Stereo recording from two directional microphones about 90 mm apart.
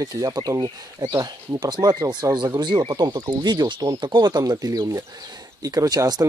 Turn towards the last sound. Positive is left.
turn(degrees=-45)  # may be behind; listen again after turning